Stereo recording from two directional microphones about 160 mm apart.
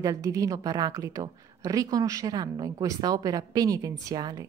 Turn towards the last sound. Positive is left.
turn(degrees=-25)  # may be behind; listen again after turning